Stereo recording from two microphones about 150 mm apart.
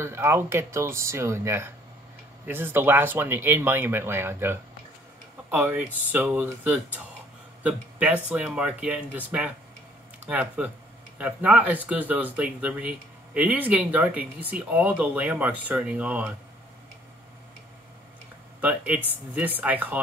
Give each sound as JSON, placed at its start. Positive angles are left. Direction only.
{"t": 0.0, "sound": "speech", "side_deg": -15}
{"t": 18.6, "sound": "speech", "side_deg": -10}